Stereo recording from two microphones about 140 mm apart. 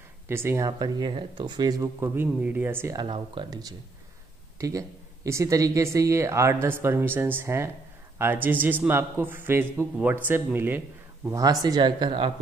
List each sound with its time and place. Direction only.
0.3 s speech: 15° right (ahead or behind)
3.0 s a man's voice: 35° right (ahead or behind); by 10.8 s 15° right (ahead or behind)
11.2 s speech: 25° right (ahead or behind)